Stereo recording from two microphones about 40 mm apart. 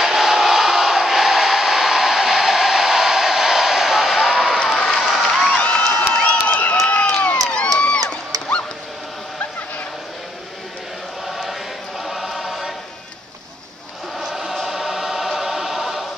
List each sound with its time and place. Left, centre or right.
0.0 s a sound: centre
4.7 s applause: centre
5.0 s crowd: centre
5.5 s a sound: left
6.9 s crowd: left
11.2 s choir: centre
14.5 s choir: centre